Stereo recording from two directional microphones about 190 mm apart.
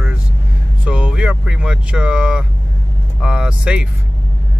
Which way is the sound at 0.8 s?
5° right (ahead or behind).